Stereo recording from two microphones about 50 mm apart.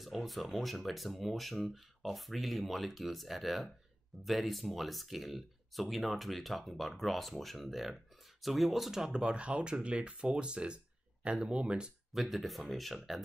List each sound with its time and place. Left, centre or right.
0.0 s speech: centre; by 11.9 s right
12.1 s speech: centre